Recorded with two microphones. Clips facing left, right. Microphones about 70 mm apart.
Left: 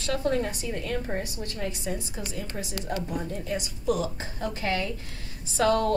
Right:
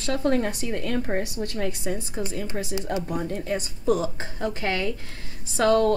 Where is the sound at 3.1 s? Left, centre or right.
Right.